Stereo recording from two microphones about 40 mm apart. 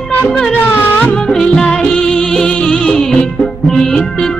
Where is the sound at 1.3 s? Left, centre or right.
Centre.